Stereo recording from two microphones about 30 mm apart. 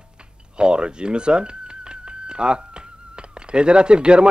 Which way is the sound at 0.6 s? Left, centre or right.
Right.